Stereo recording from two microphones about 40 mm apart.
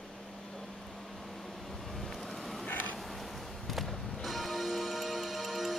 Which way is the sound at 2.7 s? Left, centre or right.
Left.